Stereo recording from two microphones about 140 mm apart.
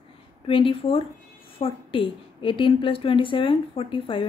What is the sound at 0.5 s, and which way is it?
A woman's voice, 40° left (ahead or behind).